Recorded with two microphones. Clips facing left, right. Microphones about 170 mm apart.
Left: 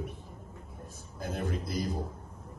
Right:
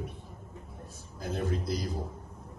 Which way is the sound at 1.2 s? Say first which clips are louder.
Right 2 dB; 55° left (ahead or behind).